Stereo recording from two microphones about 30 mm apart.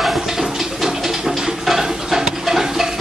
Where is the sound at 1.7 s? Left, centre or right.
Centre.